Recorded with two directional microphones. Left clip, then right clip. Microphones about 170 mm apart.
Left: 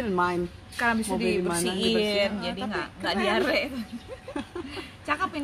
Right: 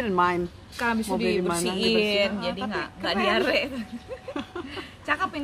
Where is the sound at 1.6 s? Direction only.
35° right (ahead or behind).